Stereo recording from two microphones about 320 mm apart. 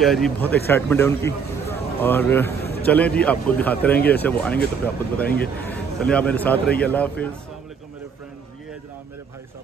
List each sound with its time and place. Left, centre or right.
0.0 s a man's voice: centre